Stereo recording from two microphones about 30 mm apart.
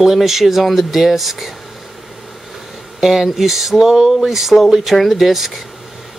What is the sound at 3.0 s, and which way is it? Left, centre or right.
Speech, centre.